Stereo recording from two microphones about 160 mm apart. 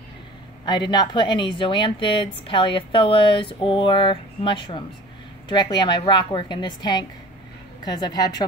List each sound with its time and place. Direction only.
0.7 s a woman's voice: 25° left (ahead or behind)